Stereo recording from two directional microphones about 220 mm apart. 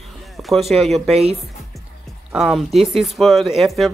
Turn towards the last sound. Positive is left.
turn(degrees=0)  # may be behind; listen again after turning